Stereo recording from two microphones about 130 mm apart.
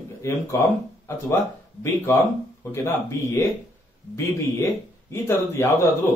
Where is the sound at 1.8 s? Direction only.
20° left (ahead or behind).